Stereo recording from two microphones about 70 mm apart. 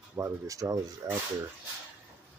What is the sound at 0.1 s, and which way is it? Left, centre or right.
Speech, right.